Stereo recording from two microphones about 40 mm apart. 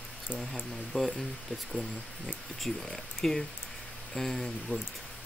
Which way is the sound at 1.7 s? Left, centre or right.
Centre.